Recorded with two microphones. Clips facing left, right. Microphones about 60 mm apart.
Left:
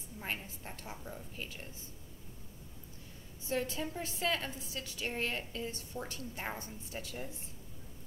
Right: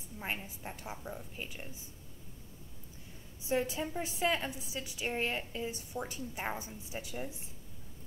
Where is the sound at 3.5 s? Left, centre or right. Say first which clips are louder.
Right 3 dB; centre.